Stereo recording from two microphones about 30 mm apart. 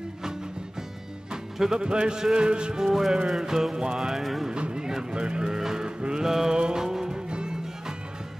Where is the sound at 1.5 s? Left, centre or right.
Centre.